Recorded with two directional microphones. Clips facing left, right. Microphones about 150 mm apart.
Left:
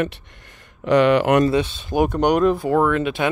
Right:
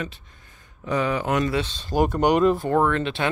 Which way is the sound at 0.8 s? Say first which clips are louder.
Left 9 dB; 80° left.